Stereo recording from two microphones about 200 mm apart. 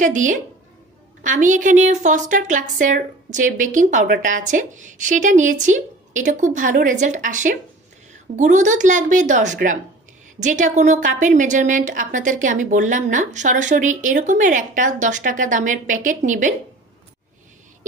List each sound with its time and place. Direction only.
0.0 s a woman's voice: 40° right (ahead or behind)